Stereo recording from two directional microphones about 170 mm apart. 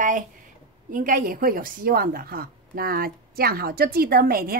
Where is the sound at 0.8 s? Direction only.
50° right (ahead or behind).